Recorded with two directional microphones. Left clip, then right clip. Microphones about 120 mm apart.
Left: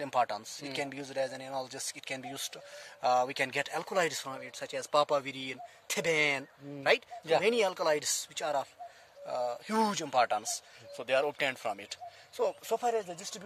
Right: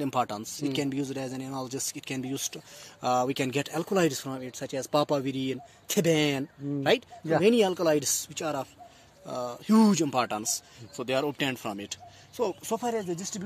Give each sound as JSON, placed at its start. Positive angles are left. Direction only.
{"t": 0.0, "sound": "speech", "side_deg": 25}
{"t": 12.4, "sound": "speech", "side_deg": 50}